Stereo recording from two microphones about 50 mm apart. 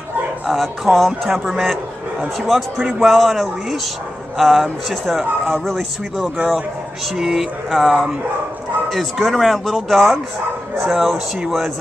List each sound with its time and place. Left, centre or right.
0.5 s speech: centre
2.9 s speech: centre
6.2 s a man's voice: right
7.2 s a sound: centre
8.9 s speech: centre